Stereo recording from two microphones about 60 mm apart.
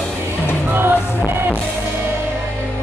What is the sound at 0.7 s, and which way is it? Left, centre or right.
Music, right.